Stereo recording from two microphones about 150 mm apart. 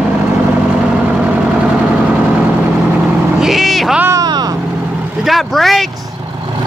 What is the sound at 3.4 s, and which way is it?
Vehicle, centre (ahead or behind).